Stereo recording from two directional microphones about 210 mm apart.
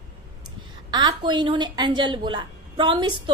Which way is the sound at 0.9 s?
20° right (ahead or behind).